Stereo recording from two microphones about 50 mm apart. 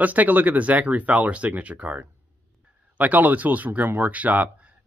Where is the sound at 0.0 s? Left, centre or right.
Right.